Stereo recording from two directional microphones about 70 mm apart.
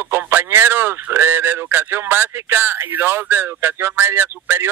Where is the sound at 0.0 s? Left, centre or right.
Right.